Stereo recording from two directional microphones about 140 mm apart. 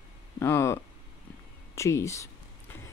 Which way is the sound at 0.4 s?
20° left (ahead or behind).